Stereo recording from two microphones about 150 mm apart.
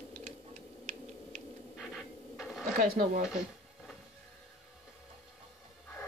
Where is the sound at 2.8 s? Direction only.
65° right (ahead or behind).